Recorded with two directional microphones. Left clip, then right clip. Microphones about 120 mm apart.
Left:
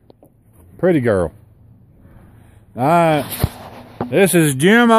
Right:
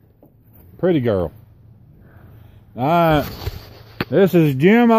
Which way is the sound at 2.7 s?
45° left (ahead or behind).